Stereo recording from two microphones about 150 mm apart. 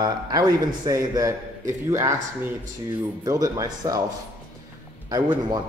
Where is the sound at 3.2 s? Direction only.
25° right (ahead or behind).